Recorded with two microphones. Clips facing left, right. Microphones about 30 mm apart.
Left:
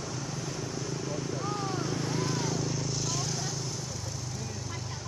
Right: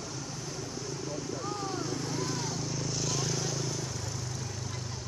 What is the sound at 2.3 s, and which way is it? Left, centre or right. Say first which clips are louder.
Vehicle: left 3 dB; centre.